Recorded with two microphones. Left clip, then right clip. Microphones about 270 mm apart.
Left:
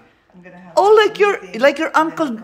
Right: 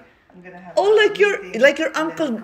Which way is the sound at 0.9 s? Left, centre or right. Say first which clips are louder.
Left 3 dB; centre.